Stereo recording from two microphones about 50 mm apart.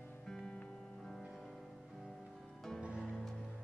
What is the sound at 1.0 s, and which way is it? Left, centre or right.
Music, centre.